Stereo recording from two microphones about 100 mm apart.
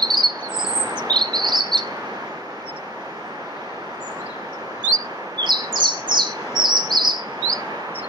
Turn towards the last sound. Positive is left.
turn(degrees=-45)  # may be behind; listen again after turning